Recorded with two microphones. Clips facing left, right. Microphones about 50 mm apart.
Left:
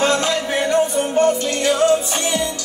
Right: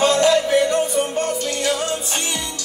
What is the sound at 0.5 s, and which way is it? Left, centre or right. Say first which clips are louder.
Music: even; left.